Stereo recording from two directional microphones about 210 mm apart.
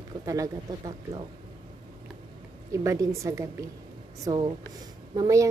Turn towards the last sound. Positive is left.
turn(degrees=-15)  # may be behind; listen again after turning